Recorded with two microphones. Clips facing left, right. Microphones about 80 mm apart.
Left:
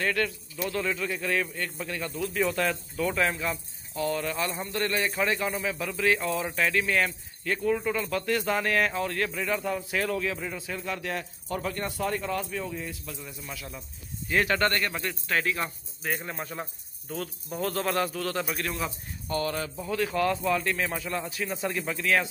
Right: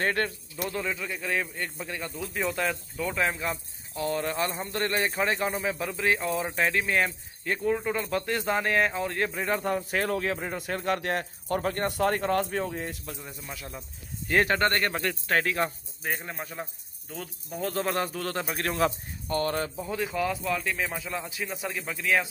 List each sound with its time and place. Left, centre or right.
0.0 s speech: right
0.7 s a man's voice: centre; by 10.6 s right
10.6 s speech: right
13.0 s speech: right
13.5 s speech: right
14.8 s speech: right
16.2 s speech: centre
17.7 s speech: right
19.9 s a man's voice: centre
21.5 s a man's voice: centre